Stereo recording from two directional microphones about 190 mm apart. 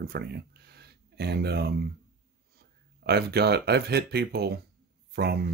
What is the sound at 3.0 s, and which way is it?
Speech, 60° right (ahead or behind).